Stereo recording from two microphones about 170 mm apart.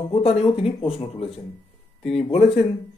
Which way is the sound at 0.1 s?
40° left (ahead or behind).